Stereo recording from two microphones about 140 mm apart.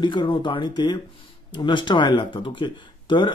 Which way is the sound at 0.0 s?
35° left (ahead or behind).